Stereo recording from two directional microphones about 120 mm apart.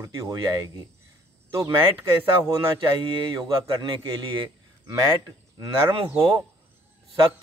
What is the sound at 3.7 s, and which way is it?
Speech, 40° right (ahead or behind).